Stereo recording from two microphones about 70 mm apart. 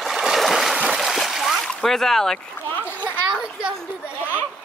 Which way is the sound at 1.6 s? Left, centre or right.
Centre.